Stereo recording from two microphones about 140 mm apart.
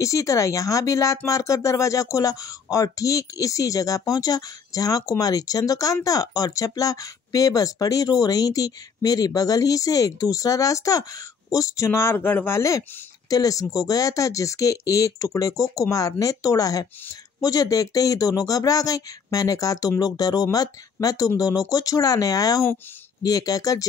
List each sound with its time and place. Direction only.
0.0 s speech: 20° left (ahead or behind)